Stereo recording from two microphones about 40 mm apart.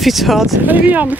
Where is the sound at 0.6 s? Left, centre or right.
Right.